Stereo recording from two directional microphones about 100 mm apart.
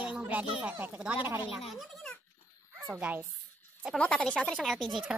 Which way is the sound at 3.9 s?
10° left (ahead or behind).